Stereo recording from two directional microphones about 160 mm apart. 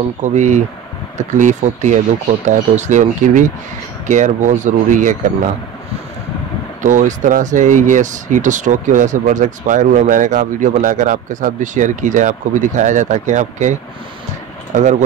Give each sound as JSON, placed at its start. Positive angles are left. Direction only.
{"t": 0.2, "sound": "speech", "side_deg": -50}
{"t": 6.8, "sound": "speech", "side_deg": -50}